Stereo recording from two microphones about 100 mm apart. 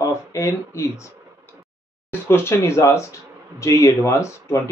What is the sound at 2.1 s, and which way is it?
Speech, 25° left (ahead or behind).